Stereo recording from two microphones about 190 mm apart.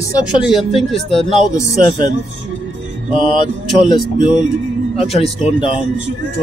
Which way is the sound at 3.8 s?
25° left (ahead or behind).